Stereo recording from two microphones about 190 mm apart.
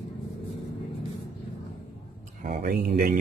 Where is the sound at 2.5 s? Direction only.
45° right (ahead or behind).